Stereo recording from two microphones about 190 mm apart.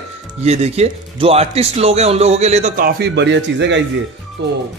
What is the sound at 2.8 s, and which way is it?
Speech, 55° right (ahead or behind).